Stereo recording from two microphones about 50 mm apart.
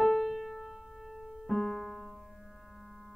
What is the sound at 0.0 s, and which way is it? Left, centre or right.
Piano, centre.